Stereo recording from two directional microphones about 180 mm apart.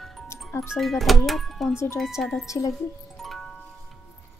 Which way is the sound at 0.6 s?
Centre (ahead or behind).